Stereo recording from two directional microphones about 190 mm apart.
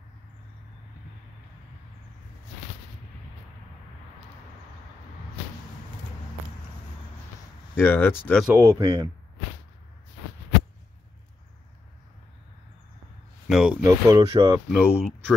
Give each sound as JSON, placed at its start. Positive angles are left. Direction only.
{"t": 7.7, "sound": "speech", "side_deg": 10}
{"t": 8.5, "sound": "speech", "side_deg": -10}
{"t": 8.8, "sound": "speech", "side_deg": -25}
{"t": 13.5, "sound": "speech", "side_deg": -5}
{"t": 13.8, "sound": "speech", "side_deg": -15}
{"t": 14.7, "sound": "speech", "side_deg": 5}